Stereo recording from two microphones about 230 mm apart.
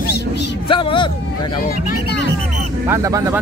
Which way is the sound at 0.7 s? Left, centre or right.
Left.